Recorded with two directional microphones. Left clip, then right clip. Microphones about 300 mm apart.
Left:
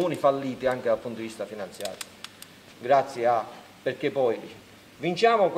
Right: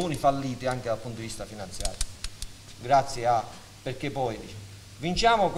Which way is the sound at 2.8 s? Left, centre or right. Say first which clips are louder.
Left 1 dB; right.